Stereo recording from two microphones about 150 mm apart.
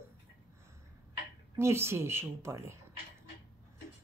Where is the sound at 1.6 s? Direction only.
15° right (ahead or behind).